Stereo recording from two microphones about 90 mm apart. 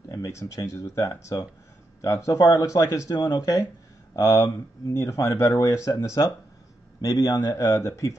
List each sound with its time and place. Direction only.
0.1 s speech: 35° left (ahead or behind)